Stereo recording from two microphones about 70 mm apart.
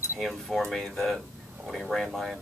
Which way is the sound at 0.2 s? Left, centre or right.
Centre.